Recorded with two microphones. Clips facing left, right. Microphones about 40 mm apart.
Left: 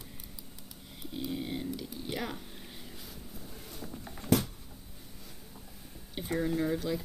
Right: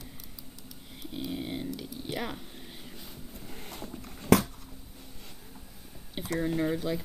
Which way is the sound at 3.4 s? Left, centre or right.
Right.